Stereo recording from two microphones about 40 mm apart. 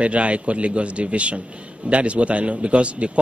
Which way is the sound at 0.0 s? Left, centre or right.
Right.